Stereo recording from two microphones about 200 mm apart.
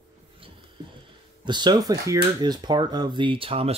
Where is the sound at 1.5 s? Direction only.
20° right (ahead or behind).